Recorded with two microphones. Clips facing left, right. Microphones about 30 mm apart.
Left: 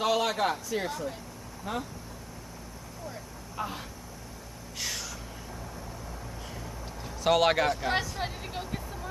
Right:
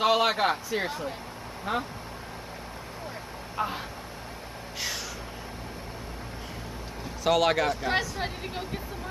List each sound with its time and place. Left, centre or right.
0.0 s a man's voice: right
3.5 s speech: right
4.7 s gasp: centre
7.2 s speech: centre